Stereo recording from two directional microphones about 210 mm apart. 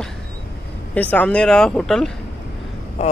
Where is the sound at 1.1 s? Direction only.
5° left (ahead or behind).